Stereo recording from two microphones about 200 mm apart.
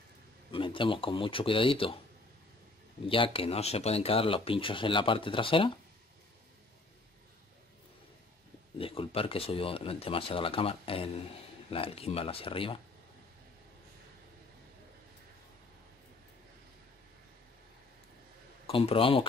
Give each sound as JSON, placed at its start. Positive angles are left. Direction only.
{"t": 0.5, "sound": "speech", "side_deg": 25}
{"t": 3.1, "sound": "speech", "side_deg": 25}
{"t": 8.7, "sound": "speech", "side_deg": 25}
{"t": 18.7, "sound": "speech", "side_deg": 25}